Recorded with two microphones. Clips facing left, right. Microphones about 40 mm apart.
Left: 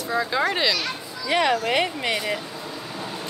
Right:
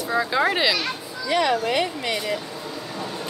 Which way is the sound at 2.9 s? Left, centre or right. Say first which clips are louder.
Right 2 dB; centre.